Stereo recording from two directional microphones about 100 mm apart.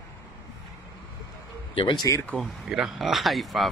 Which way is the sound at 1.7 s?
55° left (ahead or behind).